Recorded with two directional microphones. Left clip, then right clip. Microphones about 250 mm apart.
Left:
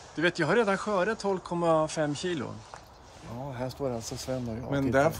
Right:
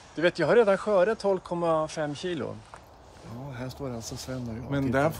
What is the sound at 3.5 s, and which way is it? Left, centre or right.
Speech, centre.